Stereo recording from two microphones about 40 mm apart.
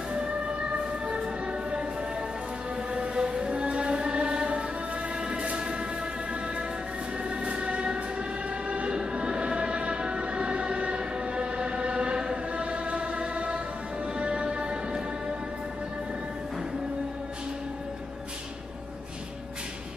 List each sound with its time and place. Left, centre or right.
0.1 s music: right
2.9 s music: right
7.2 s music: right